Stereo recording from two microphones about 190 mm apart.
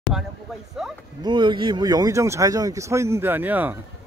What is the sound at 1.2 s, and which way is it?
Speech, 25° right (ahead or behind).